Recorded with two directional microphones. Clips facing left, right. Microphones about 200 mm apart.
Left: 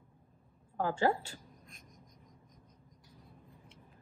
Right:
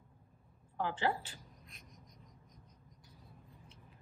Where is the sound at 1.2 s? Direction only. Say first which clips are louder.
Left 4 dB; 45° left (ahead or behind).